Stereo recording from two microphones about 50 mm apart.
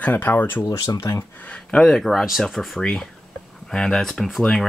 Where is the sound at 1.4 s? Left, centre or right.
Left.